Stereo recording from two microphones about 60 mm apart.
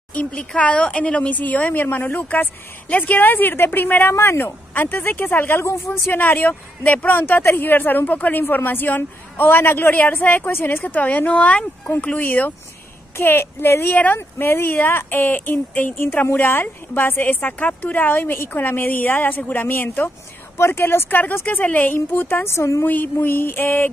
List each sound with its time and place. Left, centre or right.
0.1 s speech: left
10.5 s speech: left
10.8 s speech: left
11.9 s speech: left
22.4 s speech: left
23.1 s speech: left